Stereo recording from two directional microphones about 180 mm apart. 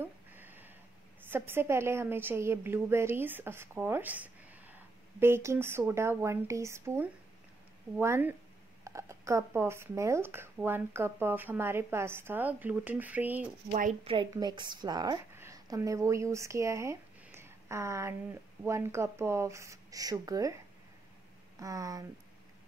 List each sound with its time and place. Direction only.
0.0 s a sound: 10° right (ahead or behind)
1.3 s a woman's voice: 10° right (ahead or behind)
14.3 s speech: 25° right (ahead or behind)